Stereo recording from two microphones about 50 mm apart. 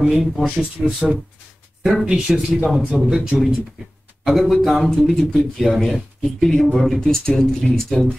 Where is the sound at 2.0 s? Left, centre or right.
Centre.